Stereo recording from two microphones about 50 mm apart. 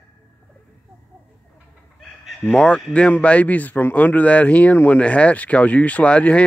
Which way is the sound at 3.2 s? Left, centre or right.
Left.